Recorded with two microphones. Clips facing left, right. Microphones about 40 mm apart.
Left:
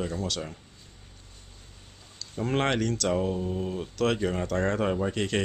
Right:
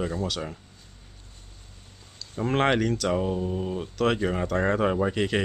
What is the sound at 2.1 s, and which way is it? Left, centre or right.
Speech, centre.